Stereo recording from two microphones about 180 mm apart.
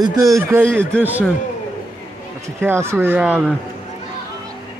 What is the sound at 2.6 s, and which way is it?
Speech, 15° right (ahead or behind).